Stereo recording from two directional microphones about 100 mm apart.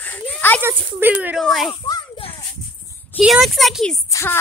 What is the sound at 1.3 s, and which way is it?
Speech, centre (ahead or behind).